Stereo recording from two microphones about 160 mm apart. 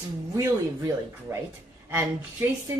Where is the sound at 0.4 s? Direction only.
20° right (ahead or behind).